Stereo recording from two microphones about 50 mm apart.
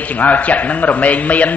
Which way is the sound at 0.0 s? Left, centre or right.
Left.